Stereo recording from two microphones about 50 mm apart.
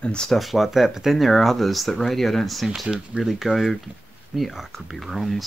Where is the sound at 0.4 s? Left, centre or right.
Centre.